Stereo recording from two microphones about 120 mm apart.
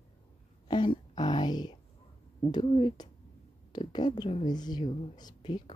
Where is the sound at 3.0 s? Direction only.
35° left (ahead or behind).